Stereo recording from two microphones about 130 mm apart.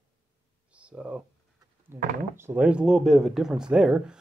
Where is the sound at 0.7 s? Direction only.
10° right (ahead or behind).